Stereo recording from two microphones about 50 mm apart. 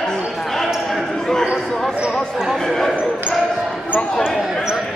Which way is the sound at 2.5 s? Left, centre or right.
Centre.